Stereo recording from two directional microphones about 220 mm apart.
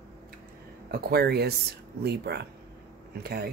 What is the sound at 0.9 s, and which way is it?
Speech, 45° right (ahead or behind).